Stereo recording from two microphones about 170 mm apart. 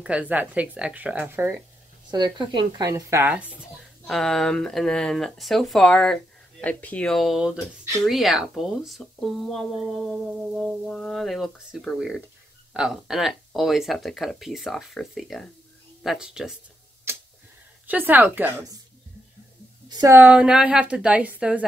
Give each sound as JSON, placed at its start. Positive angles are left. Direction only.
{"t": 0.0, "sound": "speech", "side_deg": -5}
{"t": 2.0, "sound": "speech", "side_deg": -25}
{"t": 4.1, "sound": "speech", "side_deg": 0}
{"t": 17.8, "sound": "speech", "side_deg": -10}
{"t": 19.9, "sound": "speech", "side_deg": -20}
{"t": 20.2, "sound": "speech", "side_deg": -10}